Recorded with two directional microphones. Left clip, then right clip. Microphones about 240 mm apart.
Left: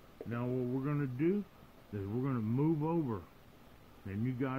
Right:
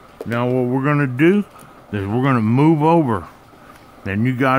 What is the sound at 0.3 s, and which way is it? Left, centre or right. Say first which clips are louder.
Speech: right 19 dB; right.